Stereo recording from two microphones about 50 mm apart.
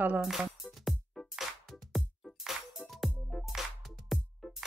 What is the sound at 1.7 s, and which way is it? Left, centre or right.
Music, centre.